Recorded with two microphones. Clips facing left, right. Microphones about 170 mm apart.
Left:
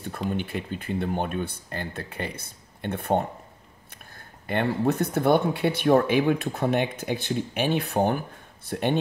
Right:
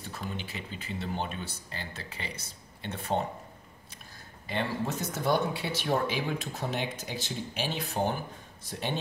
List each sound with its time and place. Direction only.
0.0 s speech: 55° left (ahead or behind)